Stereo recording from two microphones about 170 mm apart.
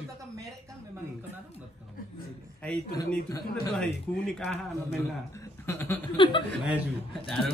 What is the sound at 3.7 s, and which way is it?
A man's voice, 5° left (ahead or behind).